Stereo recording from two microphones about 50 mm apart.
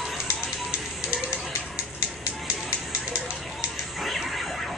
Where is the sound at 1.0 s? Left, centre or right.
Right.